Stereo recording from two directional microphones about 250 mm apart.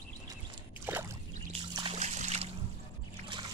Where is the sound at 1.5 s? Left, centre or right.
Right.